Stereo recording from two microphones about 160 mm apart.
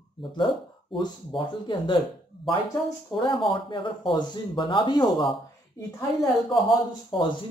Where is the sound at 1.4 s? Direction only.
30° left (ahead or behind).